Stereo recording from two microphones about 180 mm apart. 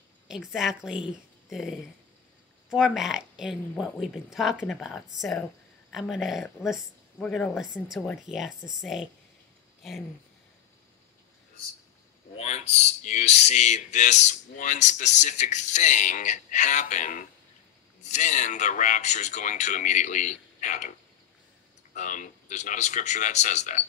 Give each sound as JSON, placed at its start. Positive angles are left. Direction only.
{"t": 0.5, "sound": "speech", "side_deg": 0}
{"t": 12.4, "sound": "speech", "side_deg": 35}
{"t": 21.9, "sound": "speech", "side_deg": 45}